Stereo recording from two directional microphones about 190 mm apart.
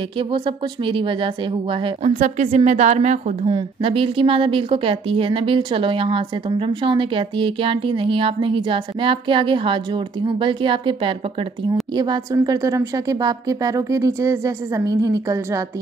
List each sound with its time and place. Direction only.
0.8 s a woman's voice: 25° right (ahead or behind)
3.4 s a woman's voice: 30° right (ahead or behind)